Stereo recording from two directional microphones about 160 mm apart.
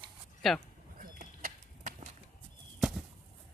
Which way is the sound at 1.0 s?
60° right (ahead or behind).